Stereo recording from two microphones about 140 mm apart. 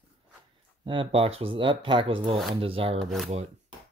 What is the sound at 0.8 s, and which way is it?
Speech, 35° right (ahead or behind).